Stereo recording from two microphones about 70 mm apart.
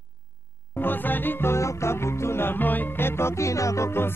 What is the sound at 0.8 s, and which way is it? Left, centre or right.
Music, left.